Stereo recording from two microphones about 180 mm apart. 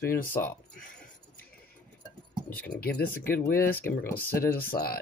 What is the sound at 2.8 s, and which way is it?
Speech, 55° left (ahead or behind).